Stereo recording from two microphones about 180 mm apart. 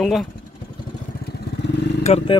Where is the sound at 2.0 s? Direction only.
35° left (ahead or behind).